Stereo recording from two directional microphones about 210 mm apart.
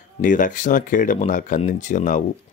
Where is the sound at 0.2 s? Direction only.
40° left (ahead or behind).